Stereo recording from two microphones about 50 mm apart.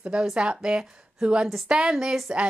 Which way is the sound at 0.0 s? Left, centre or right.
Centre.